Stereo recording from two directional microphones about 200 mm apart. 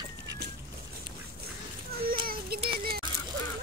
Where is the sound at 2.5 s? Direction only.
50° right (ahead or behind).